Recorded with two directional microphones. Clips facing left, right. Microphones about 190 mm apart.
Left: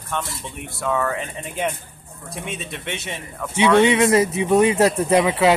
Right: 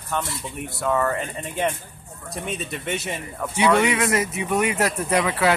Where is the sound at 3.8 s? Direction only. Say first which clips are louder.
Left 6 dB; 25° left (ahead or behind).